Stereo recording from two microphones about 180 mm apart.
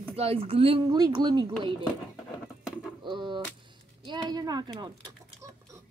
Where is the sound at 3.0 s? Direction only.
25° right (ahead or behind).